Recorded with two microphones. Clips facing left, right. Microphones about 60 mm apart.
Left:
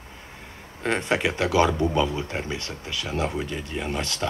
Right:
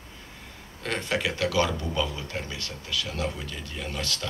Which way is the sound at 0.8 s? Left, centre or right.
Left.